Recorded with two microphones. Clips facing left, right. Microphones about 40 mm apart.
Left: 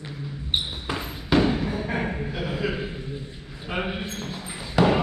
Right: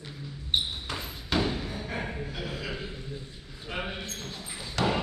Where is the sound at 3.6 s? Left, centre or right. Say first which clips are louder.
Left 6 dB; left.